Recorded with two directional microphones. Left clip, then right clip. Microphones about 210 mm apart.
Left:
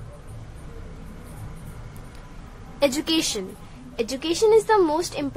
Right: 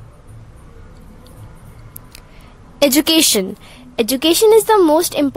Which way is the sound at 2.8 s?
50° right (ahead or behind).